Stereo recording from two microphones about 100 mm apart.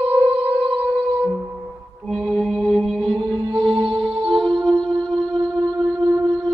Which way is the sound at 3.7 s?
65° right (ahead or behind).